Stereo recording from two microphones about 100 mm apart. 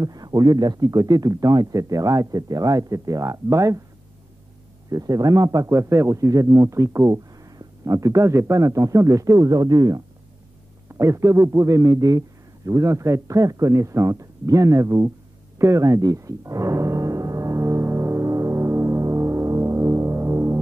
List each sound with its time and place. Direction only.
0.0 s speech: 40° right (ahead or behind)
4.8 s speech: 35° right (ahead or behind)
10.9 s speech: 30° right (ahead or behind)
15.6 s music: 30° right (ahead or behind)